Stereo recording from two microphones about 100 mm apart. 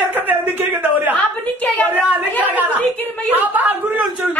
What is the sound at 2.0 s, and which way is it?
Chatter, 15° right (ahead or behind).